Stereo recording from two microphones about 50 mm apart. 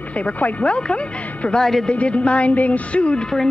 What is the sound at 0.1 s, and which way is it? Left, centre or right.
Speech, left.